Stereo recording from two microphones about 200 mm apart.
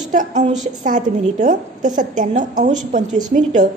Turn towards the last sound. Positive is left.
turn(degrees=-40)  # may be behind; listen again after turning